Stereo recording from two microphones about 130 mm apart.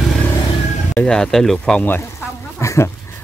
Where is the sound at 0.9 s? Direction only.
5° left (ahead or behind).